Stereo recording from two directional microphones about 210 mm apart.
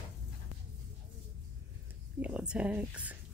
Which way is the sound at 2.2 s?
5° right (ahead or behind).